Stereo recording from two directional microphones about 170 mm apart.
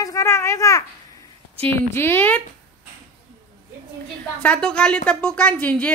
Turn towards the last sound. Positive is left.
turn(degrees=10)  # may be behind; listen again after turning